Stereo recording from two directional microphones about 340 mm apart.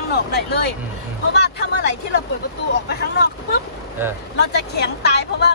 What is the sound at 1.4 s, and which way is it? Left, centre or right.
Speech, left.